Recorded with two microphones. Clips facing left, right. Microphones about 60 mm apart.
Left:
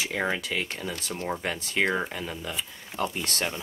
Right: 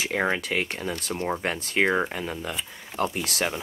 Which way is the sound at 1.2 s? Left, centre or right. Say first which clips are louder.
Right 3 dB; centre.